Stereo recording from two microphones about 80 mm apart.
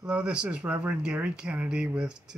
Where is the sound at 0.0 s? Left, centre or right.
Centre.